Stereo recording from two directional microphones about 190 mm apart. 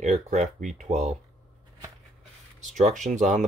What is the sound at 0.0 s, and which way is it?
Speech, 40° right (ahead or behind).